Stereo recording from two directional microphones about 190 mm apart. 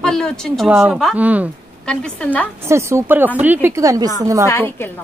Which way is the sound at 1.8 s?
5° left (ahead or behind).